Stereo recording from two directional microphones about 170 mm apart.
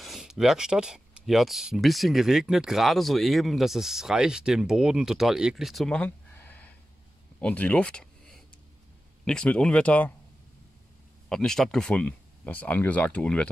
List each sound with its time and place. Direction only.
0.0 s speech: centre (ahead or behind)
11.2 s speech: 5° left (ahead or behind)